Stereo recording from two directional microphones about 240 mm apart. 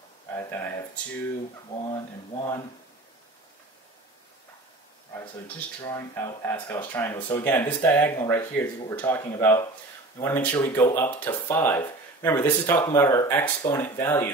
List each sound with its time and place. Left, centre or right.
0.3 s speech: centre
1.9 s speech: centre
5.8 s speech: centre